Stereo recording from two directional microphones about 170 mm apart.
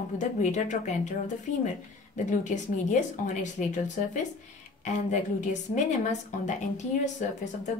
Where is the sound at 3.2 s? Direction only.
45° left (ahead or behind).